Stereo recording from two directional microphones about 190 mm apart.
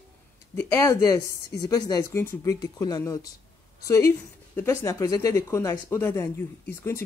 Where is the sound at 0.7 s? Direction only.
15° left (ahead or behind).